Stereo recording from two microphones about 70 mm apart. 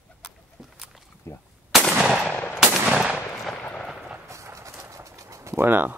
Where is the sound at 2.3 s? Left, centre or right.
Left.